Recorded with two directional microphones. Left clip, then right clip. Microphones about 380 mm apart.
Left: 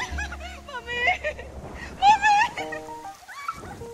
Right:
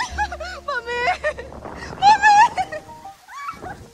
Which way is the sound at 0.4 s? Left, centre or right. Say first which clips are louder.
Right 10 dB; right.